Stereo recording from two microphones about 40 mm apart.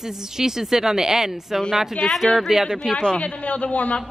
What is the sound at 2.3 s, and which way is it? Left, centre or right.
Speech, centre.